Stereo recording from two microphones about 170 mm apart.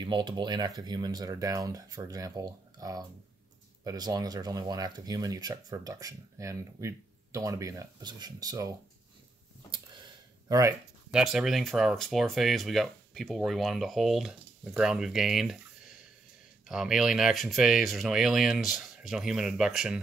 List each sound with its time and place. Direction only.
0.0 s speech: 25° right (ahead or behind)
11.1 s speech: 5° right (ahead or behind)